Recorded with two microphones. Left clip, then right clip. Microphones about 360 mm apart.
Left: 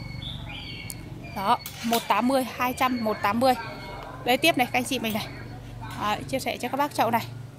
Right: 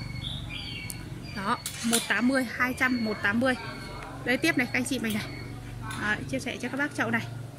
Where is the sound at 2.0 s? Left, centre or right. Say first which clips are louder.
Left 4 dB; centre.